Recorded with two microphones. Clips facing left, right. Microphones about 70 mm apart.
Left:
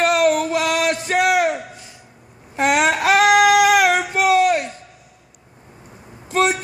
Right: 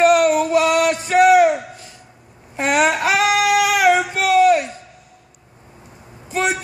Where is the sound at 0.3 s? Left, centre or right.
Left.